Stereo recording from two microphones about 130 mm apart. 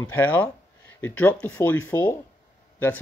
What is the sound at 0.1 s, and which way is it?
Speech, 15° left (ahead or behind).